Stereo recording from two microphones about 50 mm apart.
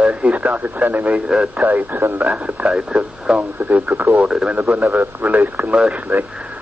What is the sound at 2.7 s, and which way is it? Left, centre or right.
Speech, centre.